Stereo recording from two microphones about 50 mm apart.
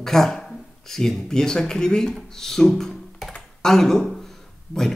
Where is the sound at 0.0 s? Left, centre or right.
Centre.